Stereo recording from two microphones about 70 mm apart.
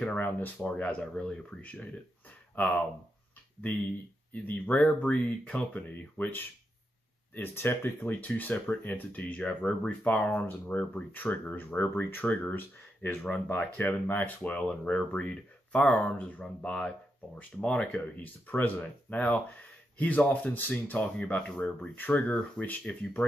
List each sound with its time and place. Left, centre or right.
0.1 s speech: left
4.3 s speech: left
7.3 s speech: left
14.7 s speech: centre